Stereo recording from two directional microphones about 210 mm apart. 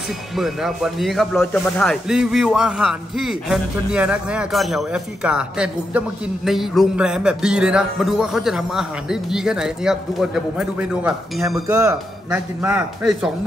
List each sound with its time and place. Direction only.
0.4 s speech: centre (ahead or behind)
11.6 s speech: 15° right (ahead or behind)
12.3 s speech: 5° right (ahead or behind)